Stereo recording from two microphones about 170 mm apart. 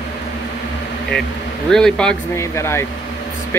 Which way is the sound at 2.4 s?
15° left (ahead or behind).